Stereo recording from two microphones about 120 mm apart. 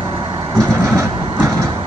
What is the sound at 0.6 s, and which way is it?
Vehicle, 25° right (ahead or behind).